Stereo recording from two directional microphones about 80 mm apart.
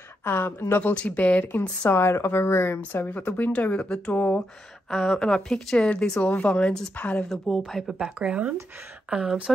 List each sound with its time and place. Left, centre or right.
0.2 s speech: left
1.9 s speech: left
4.8 s speech: centre
7.2 s speech: centre
8.0 s speech: centre